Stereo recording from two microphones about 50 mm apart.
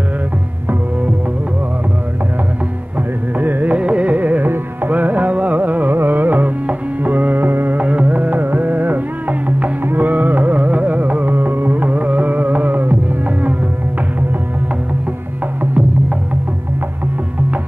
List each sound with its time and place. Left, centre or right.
3.3 s music: right
7.8 s music: right
9.8 s carnatic music: right